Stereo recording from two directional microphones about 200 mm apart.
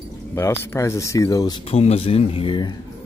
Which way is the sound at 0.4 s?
15° left (ahead or behind).